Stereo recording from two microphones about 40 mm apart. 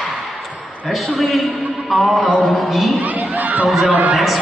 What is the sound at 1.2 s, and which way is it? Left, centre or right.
Speech, centre.